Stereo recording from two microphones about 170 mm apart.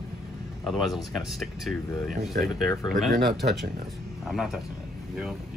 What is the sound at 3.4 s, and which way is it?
Speech, 45° right (ahead or behind).